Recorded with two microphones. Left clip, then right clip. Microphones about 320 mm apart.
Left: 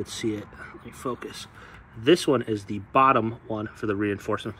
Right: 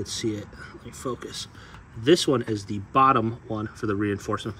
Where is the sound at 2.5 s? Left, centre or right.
Centre.